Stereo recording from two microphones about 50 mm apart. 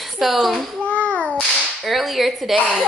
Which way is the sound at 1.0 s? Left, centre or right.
Left.